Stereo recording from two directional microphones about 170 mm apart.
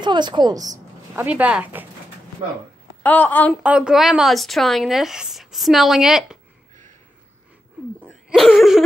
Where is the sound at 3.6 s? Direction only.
5° right (ahead or behind).